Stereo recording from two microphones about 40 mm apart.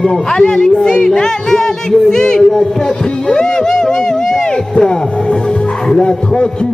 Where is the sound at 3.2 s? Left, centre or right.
Left.